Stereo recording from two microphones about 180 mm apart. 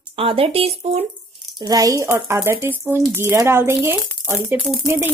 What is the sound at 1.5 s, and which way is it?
Speech, 20° right (ahead or behind).